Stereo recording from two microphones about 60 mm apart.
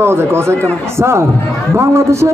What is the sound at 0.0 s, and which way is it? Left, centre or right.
A man's voice, right.